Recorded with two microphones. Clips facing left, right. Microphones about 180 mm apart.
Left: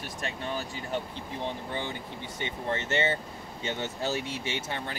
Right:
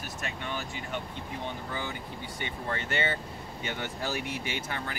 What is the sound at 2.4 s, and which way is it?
Speech, 20° left (ahead or behind).